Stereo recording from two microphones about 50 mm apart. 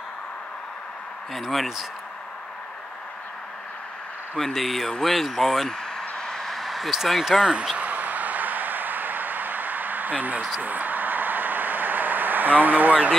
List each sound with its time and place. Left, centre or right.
1.3 s speech: centre
4.4 s speech: centre
7.7 s a sound: right
10.6 s vehicle: right